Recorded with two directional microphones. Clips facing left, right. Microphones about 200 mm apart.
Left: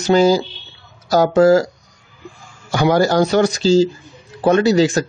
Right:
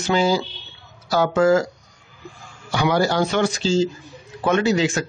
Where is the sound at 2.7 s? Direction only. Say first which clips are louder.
Left 5 dB; 45° left (ahead or behind).